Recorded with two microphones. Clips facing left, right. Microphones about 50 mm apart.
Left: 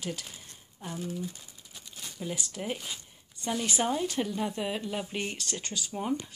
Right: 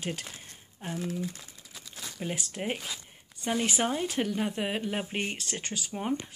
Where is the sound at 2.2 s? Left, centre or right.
Right.